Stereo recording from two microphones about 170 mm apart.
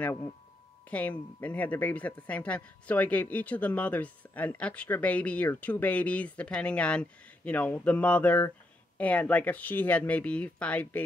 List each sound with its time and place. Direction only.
0.8 s speech: 10° left (ahead or behind)